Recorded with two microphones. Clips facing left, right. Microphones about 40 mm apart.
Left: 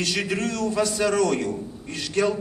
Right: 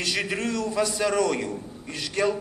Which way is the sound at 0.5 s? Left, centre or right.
Left.